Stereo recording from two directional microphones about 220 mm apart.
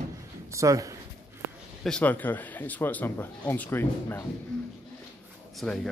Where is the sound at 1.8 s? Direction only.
5° left (ahead or behind).